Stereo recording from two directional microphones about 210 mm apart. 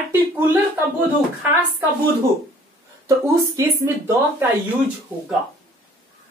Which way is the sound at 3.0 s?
15° right (ahead or behind).